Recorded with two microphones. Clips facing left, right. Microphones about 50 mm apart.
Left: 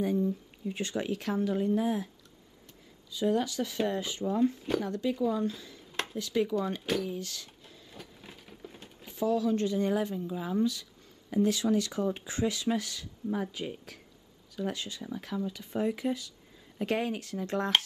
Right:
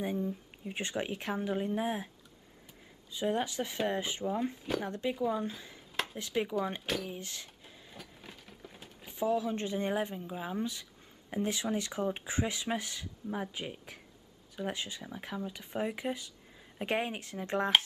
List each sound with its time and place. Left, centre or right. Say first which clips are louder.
0.0 s speech: left 5 dB; right
3.1 s speech: left 4 dB; right
4.3 s speech: left 8 dB; centre
4.8 s speech: left 1 dB; right
5.9 s a sound: even; centre
6.1 s speech: left 5 dB; right
7.9 s a sound: left 2 dB; centre
9.0 s speech: left 3 dB; centre